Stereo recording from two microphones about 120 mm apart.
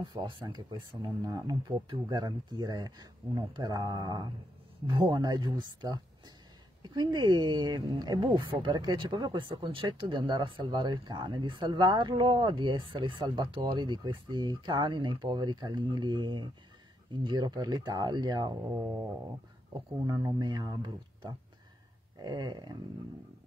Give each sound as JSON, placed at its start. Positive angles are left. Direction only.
{"t": 0.1, "sound": "speech", "side_deg": -35}
{"t": 18.8, "sound": "a sound", "side_deg": -20}
{"t": 20.1, "sound": "speech", "side_deg": -35}